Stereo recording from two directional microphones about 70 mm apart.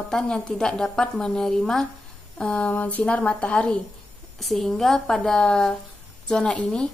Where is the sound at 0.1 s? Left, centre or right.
Centre.